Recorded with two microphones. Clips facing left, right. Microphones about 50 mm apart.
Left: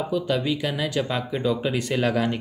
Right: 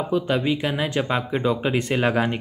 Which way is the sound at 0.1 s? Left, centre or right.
Right.